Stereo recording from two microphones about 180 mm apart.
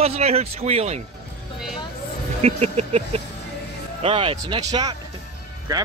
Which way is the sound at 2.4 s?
35° right (ahead or behind).